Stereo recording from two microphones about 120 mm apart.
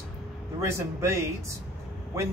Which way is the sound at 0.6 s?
25° right (ahead or behind).